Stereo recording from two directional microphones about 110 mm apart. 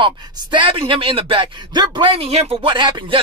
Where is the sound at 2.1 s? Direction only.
60° right (ahead or behind); by 3.1 s 45° right (ahead or behind).